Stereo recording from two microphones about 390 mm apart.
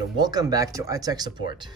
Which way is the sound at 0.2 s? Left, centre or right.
Centre.